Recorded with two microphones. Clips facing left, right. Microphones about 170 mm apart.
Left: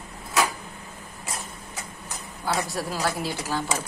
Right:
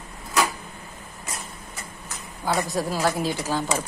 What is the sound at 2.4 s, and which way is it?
Speech, 15° right (ahead or behind).